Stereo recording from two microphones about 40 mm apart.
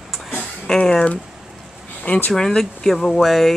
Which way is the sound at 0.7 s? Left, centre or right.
Centre.